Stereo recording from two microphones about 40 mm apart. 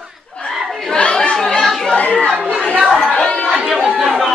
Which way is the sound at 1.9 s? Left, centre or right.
Left.